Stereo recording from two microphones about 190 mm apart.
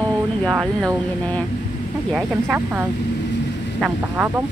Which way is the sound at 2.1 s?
5° right (ahead or behind).